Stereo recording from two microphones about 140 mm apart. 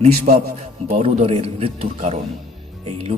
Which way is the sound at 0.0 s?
50° right (ahead or behind).